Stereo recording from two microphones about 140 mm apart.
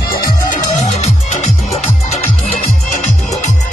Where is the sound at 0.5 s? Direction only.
55° left (ahead or behind).